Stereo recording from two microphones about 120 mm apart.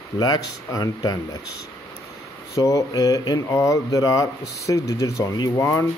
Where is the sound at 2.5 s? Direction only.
30° left (ahead or behind).